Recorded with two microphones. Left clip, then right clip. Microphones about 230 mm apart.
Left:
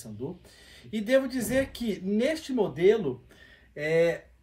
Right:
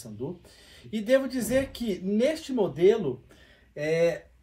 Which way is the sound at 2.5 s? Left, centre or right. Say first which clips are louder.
Even; centre.